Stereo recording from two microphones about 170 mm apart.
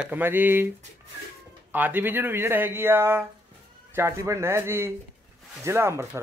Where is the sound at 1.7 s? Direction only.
10° right (ahead or behind).